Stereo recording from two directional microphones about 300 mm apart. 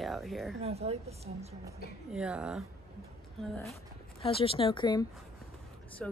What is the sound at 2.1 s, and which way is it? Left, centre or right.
Speech, centre.